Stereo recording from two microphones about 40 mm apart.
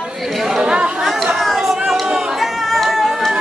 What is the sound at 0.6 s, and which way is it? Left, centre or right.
Chatter, right.